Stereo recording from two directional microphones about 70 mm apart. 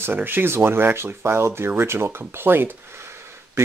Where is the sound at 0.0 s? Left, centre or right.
Right.